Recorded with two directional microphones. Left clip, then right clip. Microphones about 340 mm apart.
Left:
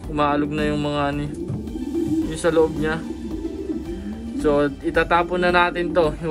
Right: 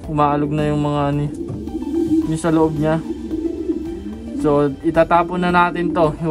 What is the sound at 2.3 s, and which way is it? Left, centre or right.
Speech, right.